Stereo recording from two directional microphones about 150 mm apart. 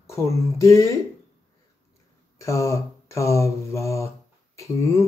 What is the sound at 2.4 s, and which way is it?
Speech, 20° left (ahead or behind).